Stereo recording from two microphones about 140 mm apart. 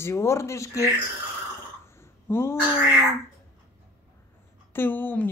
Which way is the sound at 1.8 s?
20° left (ahead or behind).